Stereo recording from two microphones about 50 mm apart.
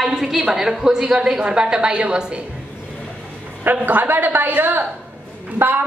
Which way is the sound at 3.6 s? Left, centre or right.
Right.